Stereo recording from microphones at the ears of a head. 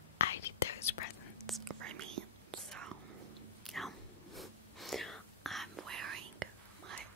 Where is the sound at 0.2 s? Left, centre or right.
Left.